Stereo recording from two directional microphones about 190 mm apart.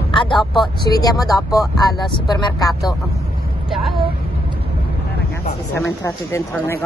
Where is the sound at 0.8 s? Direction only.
20° left (ahead or behind).